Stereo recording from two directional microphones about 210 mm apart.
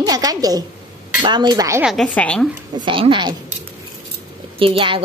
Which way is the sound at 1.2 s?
20° right (ahead or behind).